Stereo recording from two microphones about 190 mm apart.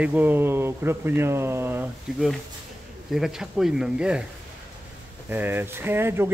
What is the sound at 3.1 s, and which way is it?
Speech, 5° right (ahead or behind).